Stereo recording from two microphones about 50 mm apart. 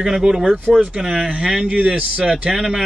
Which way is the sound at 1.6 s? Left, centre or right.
Right.